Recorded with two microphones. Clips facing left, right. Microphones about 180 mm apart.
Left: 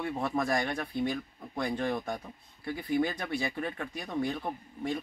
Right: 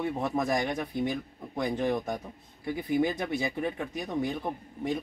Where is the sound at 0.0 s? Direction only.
15° right (ahead or behind).